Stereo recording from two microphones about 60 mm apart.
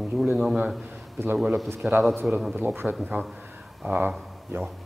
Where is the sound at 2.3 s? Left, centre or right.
Centre.